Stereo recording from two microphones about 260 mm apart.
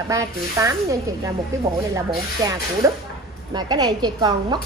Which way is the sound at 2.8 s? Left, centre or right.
Centre.